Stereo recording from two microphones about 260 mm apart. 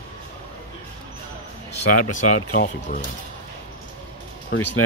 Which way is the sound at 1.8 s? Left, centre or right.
Left.